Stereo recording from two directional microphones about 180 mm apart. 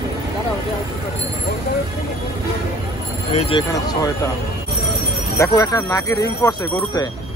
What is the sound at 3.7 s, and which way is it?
Speech, 20° left (ahead or behind).